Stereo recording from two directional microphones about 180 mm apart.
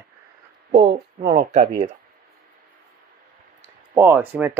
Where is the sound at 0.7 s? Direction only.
35° right (ahead or behind).